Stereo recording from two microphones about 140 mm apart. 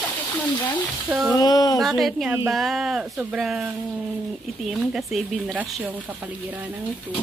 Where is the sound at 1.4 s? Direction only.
30° left (ahead or behind).